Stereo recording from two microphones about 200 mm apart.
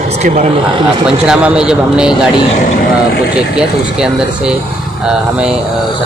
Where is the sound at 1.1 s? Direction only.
5° right (ahead or behind).